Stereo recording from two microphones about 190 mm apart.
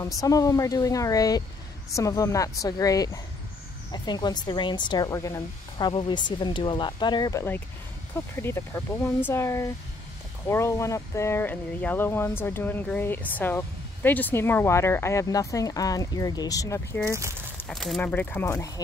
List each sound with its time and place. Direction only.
0.0 s speech: 20° left (ahead or behind)
17.1 s speech: 15° right (ahead or behind)
17.6 s speech: centre (ahead or behind)